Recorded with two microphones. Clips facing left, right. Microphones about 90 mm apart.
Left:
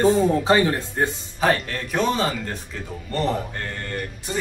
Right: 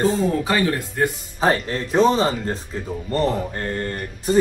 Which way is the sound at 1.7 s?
30° right (ahead or behind).